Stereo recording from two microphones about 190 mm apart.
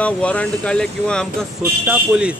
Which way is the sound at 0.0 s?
5° left (ahead or behind).